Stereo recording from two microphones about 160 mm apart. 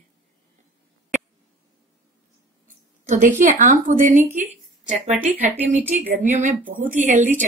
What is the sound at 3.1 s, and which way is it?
A woman's voice, 50° right (ahead or behind).